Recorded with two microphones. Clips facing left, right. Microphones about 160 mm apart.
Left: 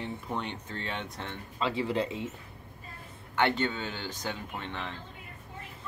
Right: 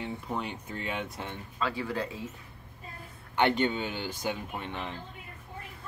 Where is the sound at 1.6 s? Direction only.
25° left (ahead or behind).